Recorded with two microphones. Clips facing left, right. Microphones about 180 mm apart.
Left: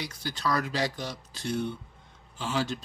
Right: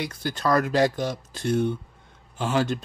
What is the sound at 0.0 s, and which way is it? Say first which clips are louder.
Speech: right 6 dB; 55° right (ahead or behind).